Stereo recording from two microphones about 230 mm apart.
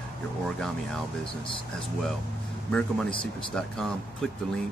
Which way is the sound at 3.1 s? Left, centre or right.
Left.